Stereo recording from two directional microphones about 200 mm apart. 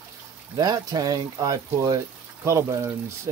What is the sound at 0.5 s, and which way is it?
Speech, 20° right (ahead or behind).